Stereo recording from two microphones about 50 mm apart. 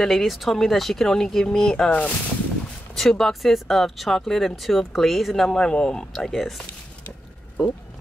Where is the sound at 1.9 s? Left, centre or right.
Left.